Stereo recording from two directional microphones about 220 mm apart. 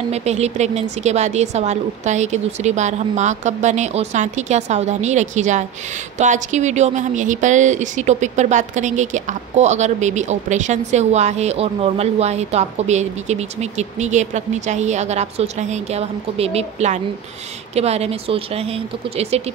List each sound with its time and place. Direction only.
0.1 s speech: 30° right (ahead or behind)